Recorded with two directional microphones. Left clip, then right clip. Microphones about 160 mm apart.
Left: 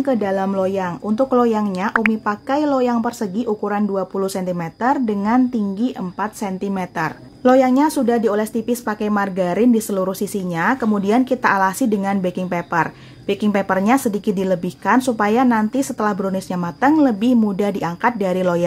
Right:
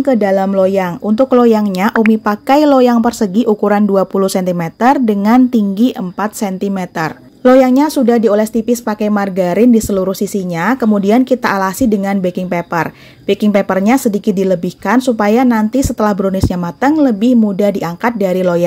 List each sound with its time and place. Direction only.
0.0 s speech: 25° right (ahead or behind)